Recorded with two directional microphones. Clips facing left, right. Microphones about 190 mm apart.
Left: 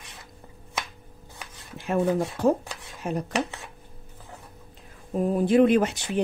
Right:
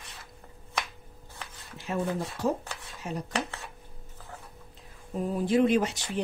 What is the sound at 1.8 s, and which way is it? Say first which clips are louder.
Speech: left 7 dB; 55° left (ahead or behind).